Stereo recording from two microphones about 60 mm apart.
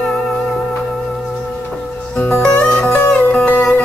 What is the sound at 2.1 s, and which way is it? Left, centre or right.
Music, left.